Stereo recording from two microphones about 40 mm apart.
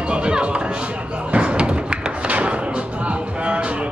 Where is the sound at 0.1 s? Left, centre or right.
Right.